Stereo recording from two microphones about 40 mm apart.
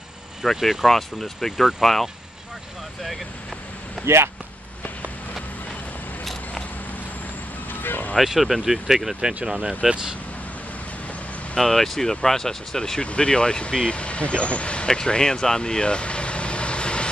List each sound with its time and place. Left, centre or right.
0.4 s speech: centre
4.0 s speech: centre
7.8 s speech: left
8.2 s speech: centre
9.5 s speech: right
11.5 s speech: centre
13.0 s speech: left
15.0 s vehicle: centre